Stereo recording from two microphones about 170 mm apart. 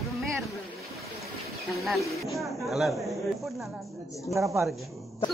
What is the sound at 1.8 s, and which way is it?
A man's voice, centre (ahead or behind).